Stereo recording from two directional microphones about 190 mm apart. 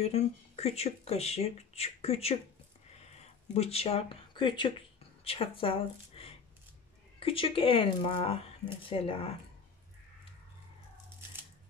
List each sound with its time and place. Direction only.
0.0 s speech: 35° left (ahead or behind)
3.5 s speech: 30° left (ahead or behind)